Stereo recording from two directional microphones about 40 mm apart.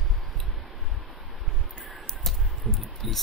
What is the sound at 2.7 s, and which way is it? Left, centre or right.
Speech, centre.